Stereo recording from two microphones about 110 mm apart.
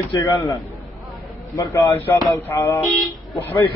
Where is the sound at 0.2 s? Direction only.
30° left (ahead or behind).